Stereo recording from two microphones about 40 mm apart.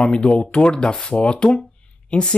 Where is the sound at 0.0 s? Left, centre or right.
Left.